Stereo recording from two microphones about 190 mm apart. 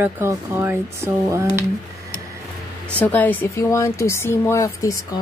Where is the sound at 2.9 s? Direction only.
10° left (ahead or behind).